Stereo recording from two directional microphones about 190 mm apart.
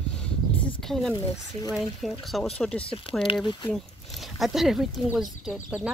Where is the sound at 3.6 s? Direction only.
Centre (ahead or behind).